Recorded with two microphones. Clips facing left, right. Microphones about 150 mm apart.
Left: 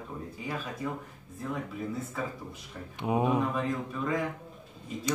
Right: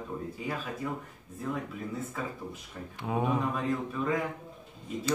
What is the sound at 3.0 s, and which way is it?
Speech, 20° left (ahead or behind).